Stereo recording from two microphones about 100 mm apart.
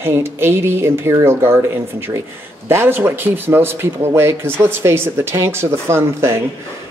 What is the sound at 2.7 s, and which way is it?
A woman's voice, 20° right (ahead or behind).